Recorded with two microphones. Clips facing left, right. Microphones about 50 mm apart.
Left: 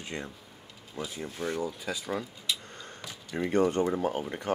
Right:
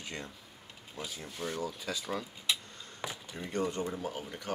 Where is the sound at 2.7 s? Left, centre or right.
Left.